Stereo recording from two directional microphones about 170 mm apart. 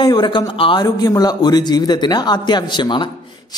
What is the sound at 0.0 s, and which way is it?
A man's voice, 25° left (ahead or behind).